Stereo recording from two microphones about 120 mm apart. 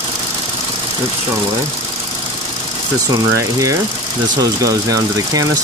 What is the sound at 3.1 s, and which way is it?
Speech, 30° right (ahead or behind).